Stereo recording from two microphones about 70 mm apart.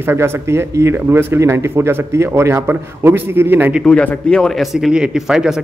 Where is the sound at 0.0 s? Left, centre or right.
Right.